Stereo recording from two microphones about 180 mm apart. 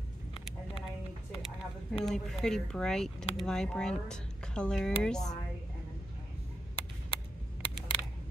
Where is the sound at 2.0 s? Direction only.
Centre (ahead or behind).